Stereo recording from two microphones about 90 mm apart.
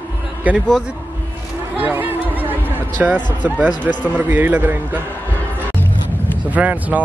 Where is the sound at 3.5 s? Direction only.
20° right (ahead or behind).